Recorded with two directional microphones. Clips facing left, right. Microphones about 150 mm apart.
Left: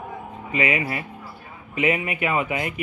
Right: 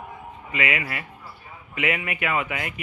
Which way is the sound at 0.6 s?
30° left (ahead or behind).